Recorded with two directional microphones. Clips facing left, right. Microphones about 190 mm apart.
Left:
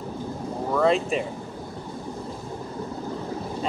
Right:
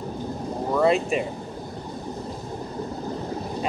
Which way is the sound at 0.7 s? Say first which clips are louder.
Right 1 dB; 5° right (ahead or behind).